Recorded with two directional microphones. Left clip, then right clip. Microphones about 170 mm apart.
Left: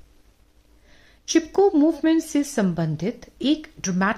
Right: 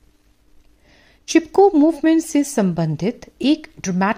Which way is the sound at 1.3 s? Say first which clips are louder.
Right 5 dB; 35° right (ahead or behind).